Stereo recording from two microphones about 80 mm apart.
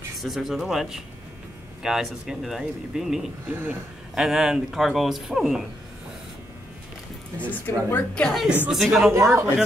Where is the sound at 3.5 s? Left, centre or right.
Right.